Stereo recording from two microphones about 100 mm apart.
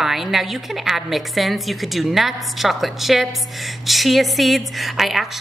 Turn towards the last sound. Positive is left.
turn(degrees=0)  # may be behind; listen again after turning